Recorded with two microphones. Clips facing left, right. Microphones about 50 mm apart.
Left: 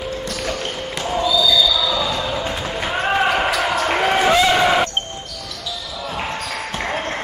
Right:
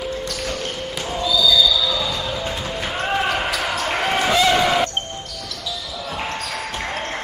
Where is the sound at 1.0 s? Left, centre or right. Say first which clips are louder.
Left 2 dB; centre.